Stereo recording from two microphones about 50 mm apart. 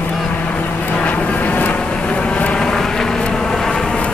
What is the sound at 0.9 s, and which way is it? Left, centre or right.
Vehicle, left.